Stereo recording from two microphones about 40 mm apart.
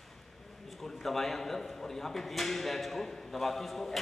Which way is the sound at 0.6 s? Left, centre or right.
Centre.